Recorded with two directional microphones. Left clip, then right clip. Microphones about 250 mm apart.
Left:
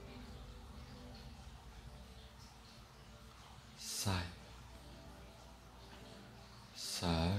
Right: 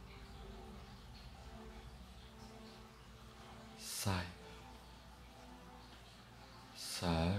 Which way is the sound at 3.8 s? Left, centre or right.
Centre.